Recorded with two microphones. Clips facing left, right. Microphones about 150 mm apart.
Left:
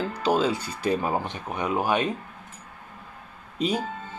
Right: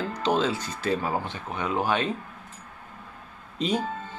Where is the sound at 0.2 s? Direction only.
10° left (ahead or behind).